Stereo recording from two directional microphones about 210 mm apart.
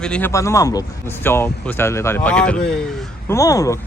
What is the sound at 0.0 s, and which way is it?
Speech, 5° left (ahead or behind).